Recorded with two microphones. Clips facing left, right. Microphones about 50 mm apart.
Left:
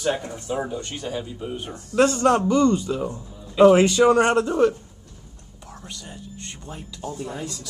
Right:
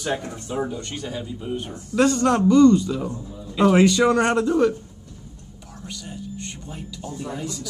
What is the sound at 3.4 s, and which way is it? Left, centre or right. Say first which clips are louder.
Speech: left 3 dB; centre.